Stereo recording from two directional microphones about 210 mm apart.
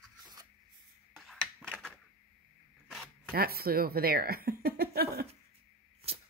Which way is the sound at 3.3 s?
45° right (ahead or behind).